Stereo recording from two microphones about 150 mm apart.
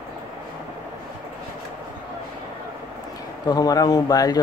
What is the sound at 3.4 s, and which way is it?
Speech, 25° left (ahead or behind).